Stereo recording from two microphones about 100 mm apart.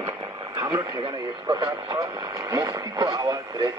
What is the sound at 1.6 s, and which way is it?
Speech, 35° right (ahead or behind).